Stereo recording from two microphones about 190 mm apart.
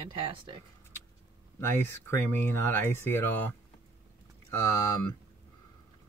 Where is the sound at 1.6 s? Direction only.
15° left (ahead or behind).